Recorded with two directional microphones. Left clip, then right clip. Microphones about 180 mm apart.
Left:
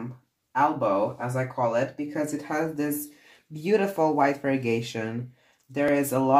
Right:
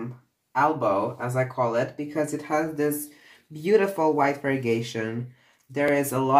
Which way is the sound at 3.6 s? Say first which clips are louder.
Right 2 dB; 25° left (ahead or behind).